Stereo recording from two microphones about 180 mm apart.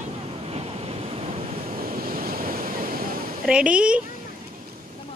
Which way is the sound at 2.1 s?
55° right (ahead or behind).